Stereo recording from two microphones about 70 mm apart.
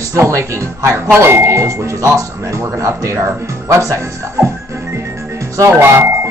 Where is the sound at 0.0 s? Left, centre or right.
Right.